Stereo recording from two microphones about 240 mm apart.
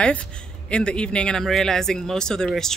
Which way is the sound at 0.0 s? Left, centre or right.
Centre.